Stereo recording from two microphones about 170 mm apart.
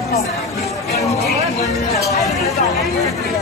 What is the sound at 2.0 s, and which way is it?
Speech, 20° left (ahead or behind).